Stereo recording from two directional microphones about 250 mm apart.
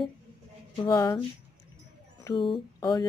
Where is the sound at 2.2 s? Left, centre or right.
Centre.